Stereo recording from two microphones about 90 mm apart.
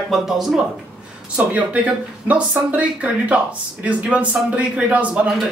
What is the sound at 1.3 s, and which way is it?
Speech, 15° right (ahead or behind).